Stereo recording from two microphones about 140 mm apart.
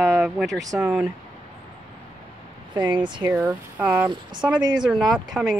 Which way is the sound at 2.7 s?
35° right (ahead or behind).